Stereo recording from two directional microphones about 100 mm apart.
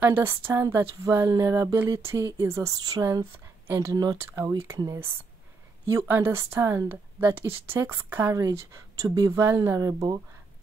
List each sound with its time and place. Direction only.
0.0 s speech: 20° right (ahead or behind); by 5.0 s 35° right (ahead or behind)
6.0 s speech: 25° right (ahead or behind); by 10.2 s 40° right (ahead or behind)